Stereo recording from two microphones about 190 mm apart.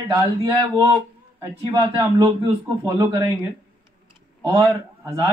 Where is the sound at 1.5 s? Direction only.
25° right (ahead or behind).